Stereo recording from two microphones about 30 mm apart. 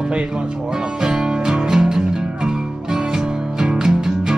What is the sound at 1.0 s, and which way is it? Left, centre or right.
Music, right.